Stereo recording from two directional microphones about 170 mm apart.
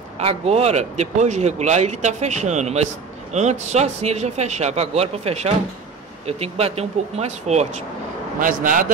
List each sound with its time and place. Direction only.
0.2 s speech: 40° right (ahead or behind)
8.4 s a man's voice: 55° right (ahead or behind)